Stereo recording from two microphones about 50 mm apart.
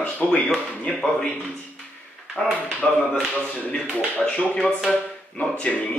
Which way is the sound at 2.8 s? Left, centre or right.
Left.